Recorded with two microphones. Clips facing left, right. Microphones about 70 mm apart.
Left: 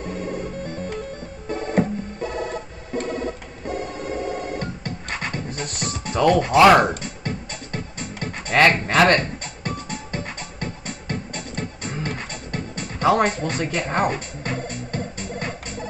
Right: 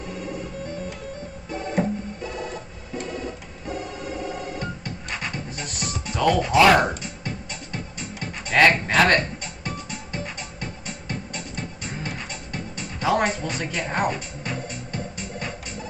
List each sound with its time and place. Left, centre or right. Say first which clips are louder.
0.0 s music: left 4 dB; left